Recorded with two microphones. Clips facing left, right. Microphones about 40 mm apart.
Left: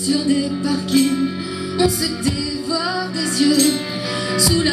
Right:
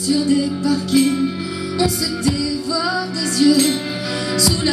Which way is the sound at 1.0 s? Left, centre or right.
Centre.